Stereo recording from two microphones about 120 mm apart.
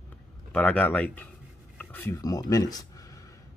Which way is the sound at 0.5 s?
15° left (ahead or behind).